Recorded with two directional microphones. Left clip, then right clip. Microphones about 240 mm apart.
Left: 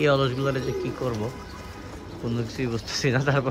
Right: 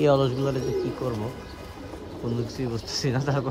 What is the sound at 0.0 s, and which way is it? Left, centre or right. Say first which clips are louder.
Speech: right 1 dB; centre.